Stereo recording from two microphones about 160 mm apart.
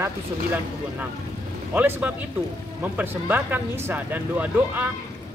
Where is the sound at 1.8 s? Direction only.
10° right (ahead or behind).